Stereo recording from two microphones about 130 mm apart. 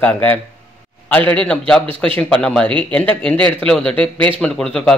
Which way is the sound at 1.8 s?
45° right (ahead or behind).